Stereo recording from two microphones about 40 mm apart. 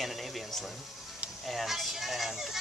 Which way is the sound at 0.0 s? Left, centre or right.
Centre.